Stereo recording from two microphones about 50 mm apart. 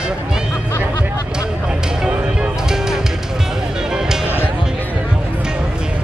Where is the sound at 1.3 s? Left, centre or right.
Centre.